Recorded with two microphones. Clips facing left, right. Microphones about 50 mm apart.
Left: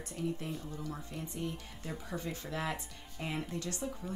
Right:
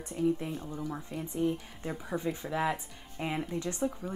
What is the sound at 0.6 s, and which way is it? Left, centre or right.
Speech, right.